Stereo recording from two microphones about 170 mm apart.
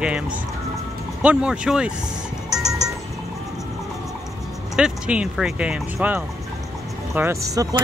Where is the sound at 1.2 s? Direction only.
5° right (ahead or behind).